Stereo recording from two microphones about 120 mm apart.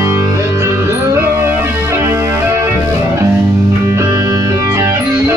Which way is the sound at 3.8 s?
25° right (ahead or behind).